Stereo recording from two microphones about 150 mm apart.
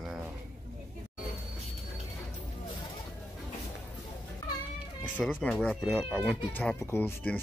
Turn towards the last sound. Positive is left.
turn(degrees=15)  # may be behind; listen again after turning